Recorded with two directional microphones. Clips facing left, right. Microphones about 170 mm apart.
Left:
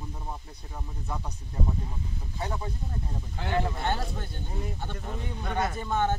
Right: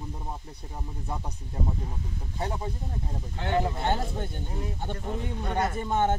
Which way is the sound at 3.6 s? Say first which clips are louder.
Right 2 dB; 20° right (ahead or behind).